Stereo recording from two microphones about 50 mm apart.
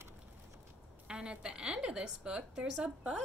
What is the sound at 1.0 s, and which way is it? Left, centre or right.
A woman's voice, centre.